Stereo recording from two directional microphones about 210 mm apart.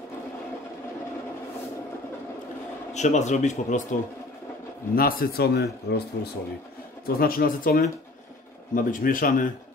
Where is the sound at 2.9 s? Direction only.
35° left (ahead or behind).